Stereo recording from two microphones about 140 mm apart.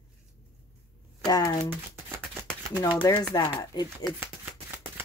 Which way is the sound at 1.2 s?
25° left (ahead or behind).